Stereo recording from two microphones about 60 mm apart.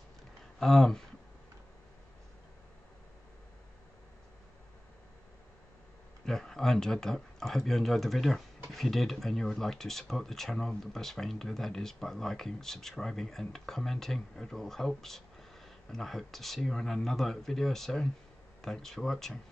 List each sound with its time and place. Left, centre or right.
0.6 s speech: centre
6.2 s speech: centre